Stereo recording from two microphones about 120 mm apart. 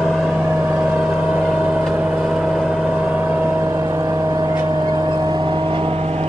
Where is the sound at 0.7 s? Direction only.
15° right (ahead or behind).